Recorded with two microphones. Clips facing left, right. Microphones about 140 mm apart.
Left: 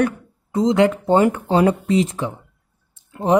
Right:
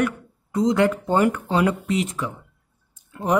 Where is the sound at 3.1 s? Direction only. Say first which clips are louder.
Left 5 dB; 25° left (ahead or behind).